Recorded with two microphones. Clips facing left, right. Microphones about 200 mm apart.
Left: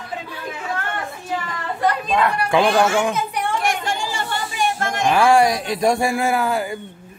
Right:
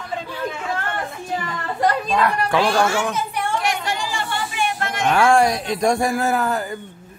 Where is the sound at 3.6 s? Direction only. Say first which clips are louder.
Left 1 dB; 50° left (ahead or behind).